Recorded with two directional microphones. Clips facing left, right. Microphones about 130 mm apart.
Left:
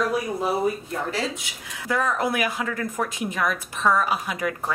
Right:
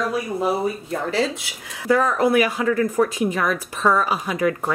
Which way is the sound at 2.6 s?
40° right (ahead or behind).